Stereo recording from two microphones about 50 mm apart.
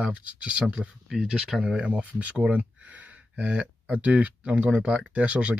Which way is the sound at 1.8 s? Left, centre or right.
Right.